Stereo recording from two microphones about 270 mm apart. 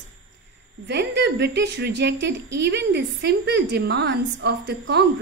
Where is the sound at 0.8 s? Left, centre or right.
Right.